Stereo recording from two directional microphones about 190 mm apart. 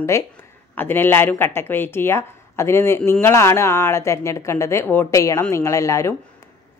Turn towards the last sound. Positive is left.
turn(degrees=15)  # may be behind; listen again after turning